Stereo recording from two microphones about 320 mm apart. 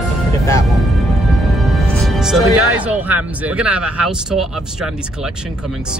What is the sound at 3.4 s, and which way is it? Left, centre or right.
Speech, centre.